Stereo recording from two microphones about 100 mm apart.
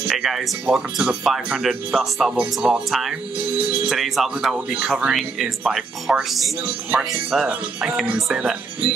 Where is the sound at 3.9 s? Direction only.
Centre (ahead or behind).